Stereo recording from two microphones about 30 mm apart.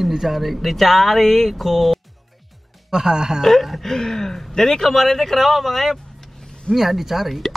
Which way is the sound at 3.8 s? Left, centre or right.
Centre.